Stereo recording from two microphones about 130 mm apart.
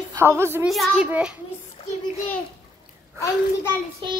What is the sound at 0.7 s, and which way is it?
Speech, centre (ahead or behind).